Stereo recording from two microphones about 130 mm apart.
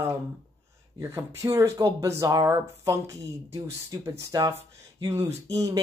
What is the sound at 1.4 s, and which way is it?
Speech, 25° right (ahead or behind).